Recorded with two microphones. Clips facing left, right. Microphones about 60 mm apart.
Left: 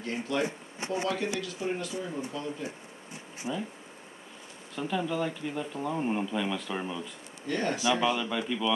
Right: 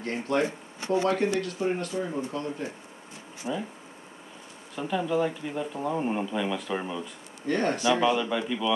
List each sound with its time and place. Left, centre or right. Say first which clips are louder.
0.0 s speech: right 4 dB; right
0.5 s speech: right 5 dB; left
1.0 s speech: right 5 dB; right
3.4 s speech: right 3 dB; centre
4.7 s speech: right 4 dB; centre
7.4 s speech: right 4 dB; right
7.8 s speech: right 3 dB; centre